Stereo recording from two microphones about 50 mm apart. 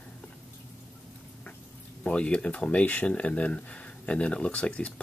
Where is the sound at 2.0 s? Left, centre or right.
Left.